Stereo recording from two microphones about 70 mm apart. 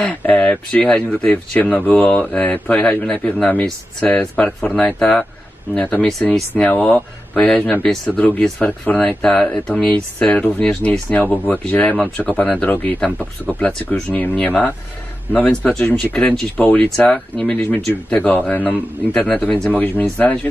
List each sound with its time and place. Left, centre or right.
0.1 s speech: centre